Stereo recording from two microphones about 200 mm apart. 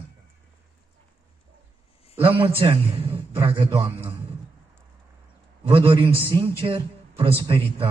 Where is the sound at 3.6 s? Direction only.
25° right (ahead or behind).